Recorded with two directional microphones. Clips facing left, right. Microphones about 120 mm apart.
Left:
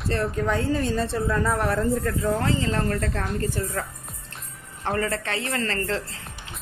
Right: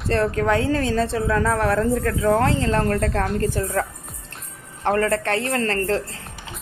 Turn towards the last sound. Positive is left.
turn(degrees=-50)  # may be behind; listen again after turning